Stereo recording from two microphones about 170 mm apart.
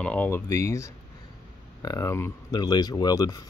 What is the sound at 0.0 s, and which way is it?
Speech, 10° left (ahead or behind).